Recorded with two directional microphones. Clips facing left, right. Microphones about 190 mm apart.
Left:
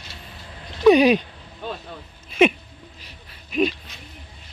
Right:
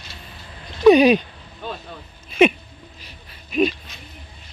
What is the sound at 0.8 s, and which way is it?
Speech, 20° right (ahead or behind).